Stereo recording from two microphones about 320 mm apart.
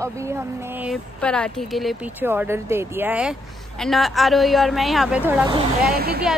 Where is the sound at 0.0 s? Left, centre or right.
Centre.